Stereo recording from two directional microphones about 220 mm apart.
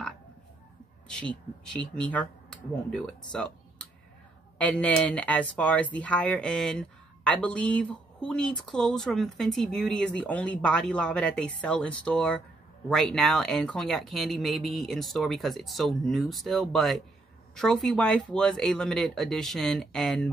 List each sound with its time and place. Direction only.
1.0 s speech: 5° left (ahead or behind)